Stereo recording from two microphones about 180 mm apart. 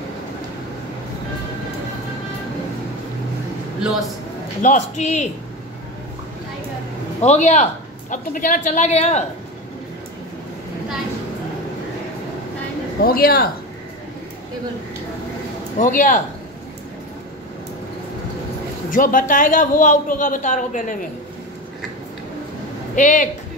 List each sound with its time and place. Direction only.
4.6 s a man's voice: 40° left (ahead or behind)
7.2 s a man's voice: 40° left (ahead or behind)
13.0 s speech: 55° left (ahead or behind)
15.8 s a woman's voice: 45° left (ahead or behind)
18.9 s a woman's voice: 50° left (ahead or behind)
22.9 s a woman's voice: 45° left (ahead or behind)